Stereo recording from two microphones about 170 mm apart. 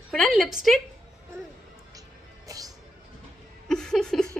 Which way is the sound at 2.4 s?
20° right (ahead or behind).